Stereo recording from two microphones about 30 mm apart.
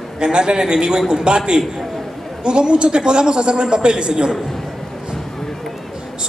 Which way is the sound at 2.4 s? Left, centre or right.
Right.